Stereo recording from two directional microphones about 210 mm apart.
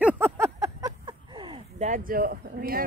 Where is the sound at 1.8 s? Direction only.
40° right (ahead or behind).